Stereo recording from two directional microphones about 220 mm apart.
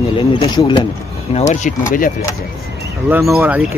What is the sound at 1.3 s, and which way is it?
Speech, 30° left (ahead or behind).